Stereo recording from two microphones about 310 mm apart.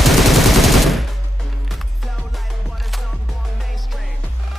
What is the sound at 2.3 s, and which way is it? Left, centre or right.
Music, centre.